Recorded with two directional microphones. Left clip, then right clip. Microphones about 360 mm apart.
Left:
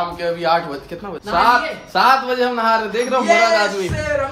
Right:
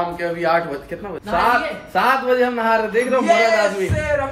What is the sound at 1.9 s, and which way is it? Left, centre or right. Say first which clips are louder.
A man's voice: left 2 dB; centre.